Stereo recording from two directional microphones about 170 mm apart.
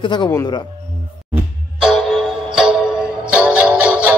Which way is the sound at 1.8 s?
Centre (ahead or behind).